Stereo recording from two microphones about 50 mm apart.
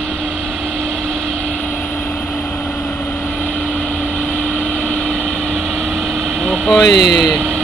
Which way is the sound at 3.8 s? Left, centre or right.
Left.